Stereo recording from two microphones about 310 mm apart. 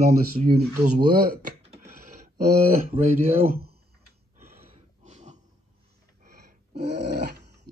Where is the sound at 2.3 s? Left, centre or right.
Right.